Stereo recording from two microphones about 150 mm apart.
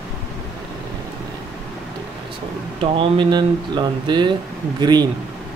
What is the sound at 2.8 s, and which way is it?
Speech, 35° right (ahead or behind).